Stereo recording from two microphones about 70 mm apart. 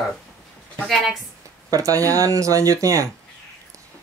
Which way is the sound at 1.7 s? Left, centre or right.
Right.